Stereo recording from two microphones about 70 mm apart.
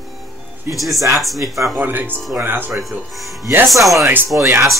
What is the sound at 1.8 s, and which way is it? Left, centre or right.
Music, right.